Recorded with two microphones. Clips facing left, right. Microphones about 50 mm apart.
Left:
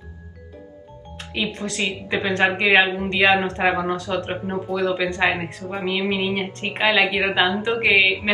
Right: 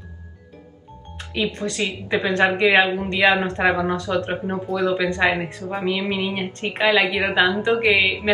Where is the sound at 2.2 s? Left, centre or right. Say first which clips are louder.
Right 1 dB; left.